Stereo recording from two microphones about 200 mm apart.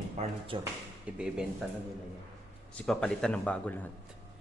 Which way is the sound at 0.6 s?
5° right (ahead or behind).